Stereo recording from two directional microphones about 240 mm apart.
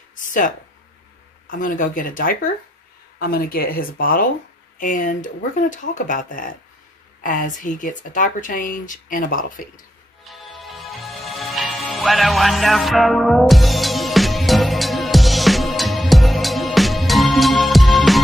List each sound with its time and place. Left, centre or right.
0.1 s a sound: left
1.5 s speech: left
10.2 s music: centre